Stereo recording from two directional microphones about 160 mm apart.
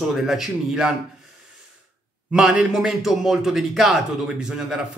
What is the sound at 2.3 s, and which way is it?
Speech, 5° right (ahead or behind).